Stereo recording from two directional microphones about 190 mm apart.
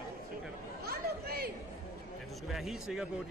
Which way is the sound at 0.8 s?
55° right (ahead or behind).